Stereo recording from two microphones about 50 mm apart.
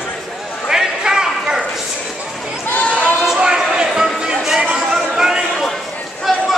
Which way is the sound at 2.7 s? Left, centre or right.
Left.